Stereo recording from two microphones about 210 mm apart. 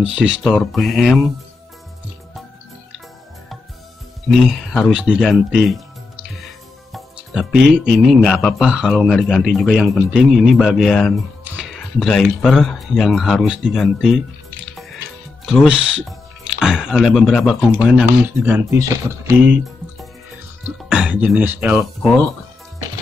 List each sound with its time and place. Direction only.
0.2 s speech: 5° right (ahead or behind)
4.3 s speech: centre (ahead or behind)
6.9 s speech: centre (ahead or behind)
20.6 s speech: 5° right (ahead or behind)